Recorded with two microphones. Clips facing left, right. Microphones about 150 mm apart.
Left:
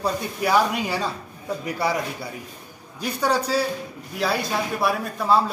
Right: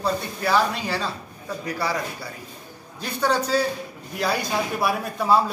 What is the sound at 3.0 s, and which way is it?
Speech, 10° left (ahead or behind).